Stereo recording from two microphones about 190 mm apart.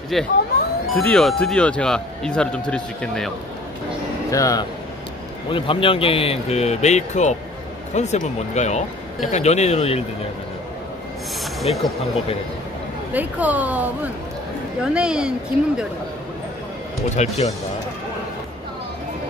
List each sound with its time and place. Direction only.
0.1 s speech: centre (ahead or behind)
4.3 s speech: 20° left (ahead or behind); by 10.0 s 35° left (ahead or behind)
11.7 s speech: 30° left (ahead or behind)
13.1 s speech: 10° right (ahead or behind)
17.1 s speech: 35° left (ahead or behind)